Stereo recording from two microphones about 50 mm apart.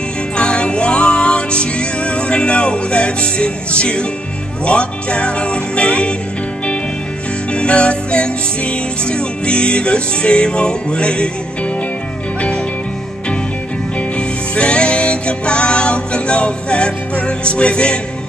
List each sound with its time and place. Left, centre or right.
0.4 s music: centre
7.5 s music: left
14.1 s music: left